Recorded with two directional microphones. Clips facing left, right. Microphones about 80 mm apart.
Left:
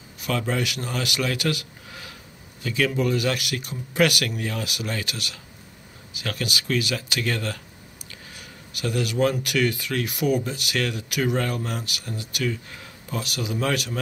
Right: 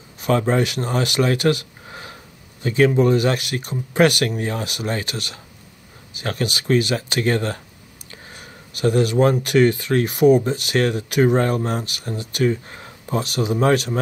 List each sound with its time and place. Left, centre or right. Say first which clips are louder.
0.2 s speech: right 7 dB; right